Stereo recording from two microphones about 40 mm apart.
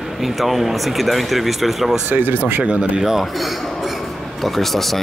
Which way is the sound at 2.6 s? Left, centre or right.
Right.